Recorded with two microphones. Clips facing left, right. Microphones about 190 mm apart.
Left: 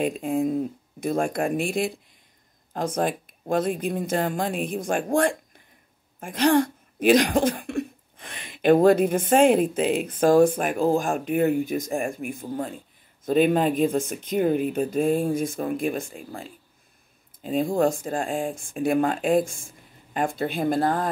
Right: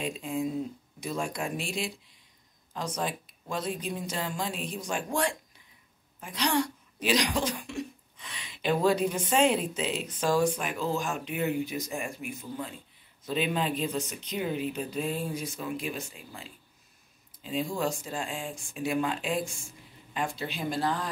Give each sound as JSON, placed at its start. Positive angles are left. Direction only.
{"t": 0.0, "sound": "speech", "side_deg": 55}